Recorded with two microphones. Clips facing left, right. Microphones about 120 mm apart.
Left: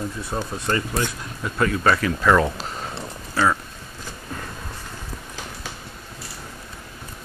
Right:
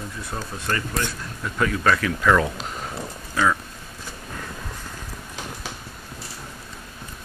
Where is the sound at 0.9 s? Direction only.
5° left (ahead or behind).